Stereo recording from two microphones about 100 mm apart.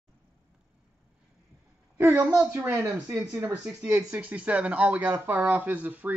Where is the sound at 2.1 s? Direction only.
15° right (ahead or behind).